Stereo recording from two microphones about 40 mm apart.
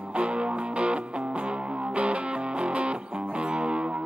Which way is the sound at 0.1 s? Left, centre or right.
Right.